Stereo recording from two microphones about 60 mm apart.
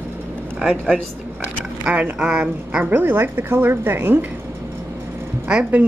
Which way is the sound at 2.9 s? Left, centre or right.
Right.